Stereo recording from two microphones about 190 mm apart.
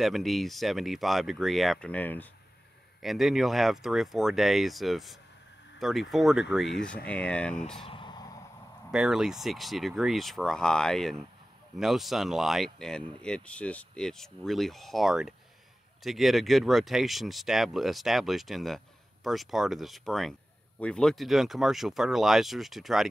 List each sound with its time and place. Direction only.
0.0 s speech: centre (ahead or behind)
7.8 s a sound: 25° left (ahead or behind)
8.9 s speech: centre (ahead or behind)